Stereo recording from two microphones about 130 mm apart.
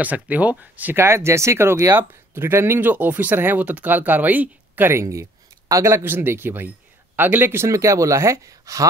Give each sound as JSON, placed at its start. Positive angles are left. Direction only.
{"t": 0.0, "sound": "speech", "side_deg": -10}